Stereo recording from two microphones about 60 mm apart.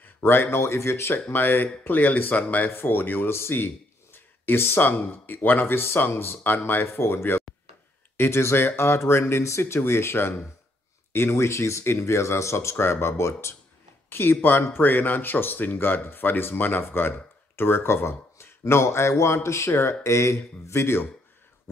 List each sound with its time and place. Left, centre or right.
0.2 s speech: left
1.3 s speech: left